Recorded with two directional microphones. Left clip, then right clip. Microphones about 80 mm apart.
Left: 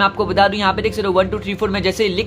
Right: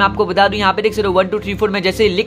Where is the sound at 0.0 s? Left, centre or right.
Right.